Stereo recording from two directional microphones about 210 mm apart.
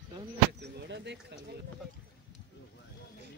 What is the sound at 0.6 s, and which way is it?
Speech, 55° right (ahead or behind).